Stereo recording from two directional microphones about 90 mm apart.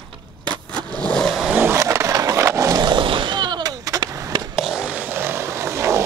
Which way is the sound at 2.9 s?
70° right (ahead or behind).